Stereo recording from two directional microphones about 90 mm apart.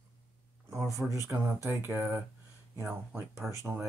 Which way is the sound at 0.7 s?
35° right (ahead or behind).